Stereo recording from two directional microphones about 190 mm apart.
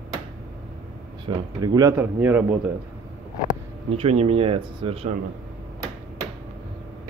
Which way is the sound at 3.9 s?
35° right (ahead or behind).